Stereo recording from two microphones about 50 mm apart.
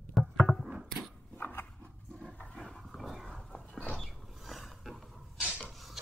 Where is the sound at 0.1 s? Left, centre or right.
Centre.